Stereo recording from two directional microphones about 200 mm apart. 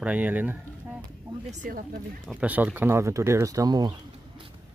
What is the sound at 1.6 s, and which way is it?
Speech, 40° right (ahead or behind).